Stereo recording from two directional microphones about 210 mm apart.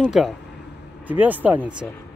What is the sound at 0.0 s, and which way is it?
A woman's voice, centre (ahead or behind).